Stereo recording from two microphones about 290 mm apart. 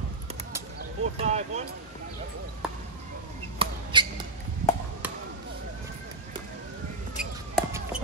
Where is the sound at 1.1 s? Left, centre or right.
Right.